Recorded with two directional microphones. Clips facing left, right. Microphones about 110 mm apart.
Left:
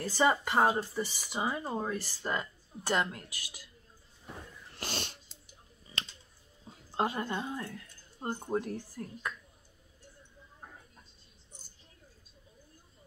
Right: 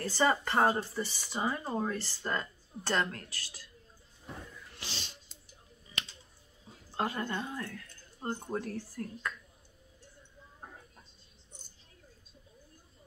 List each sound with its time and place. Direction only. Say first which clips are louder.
0.0 s speech: left 1 dB; 15° left (ahead or behind)
4.7 s a sound: left 8 dB; 55° left (ahead or behind)
7.0 s speech: left 2 dB; 20° left (ahead or behind)